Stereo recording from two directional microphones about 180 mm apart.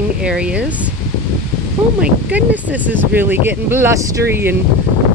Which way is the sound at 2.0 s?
10° right (ahead or behind).